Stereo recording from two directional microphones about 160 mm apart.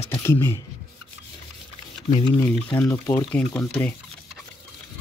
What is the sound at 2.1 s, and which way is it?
Speech, 30° left (ahead or behind).